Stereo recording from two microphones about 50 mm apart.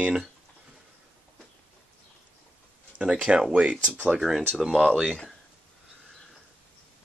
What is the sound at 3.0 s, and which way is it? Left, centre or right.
Speech, centre.